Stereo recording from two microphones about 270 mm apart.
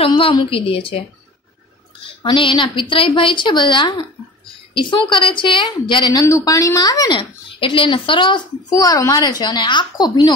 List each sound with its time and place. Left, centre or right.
0.0 s a woman's voice: centre
2.2 s a woman's voice: centre